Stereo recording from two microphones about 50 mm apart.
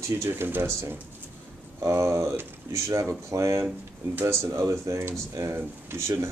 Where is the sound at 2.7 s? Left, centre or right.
Right.